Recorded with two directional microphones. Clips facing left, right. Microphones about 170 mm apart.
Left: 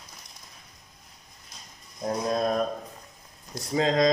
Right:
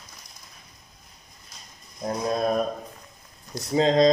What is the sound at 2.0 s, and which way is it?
Speech, 5° right (ahead or behind).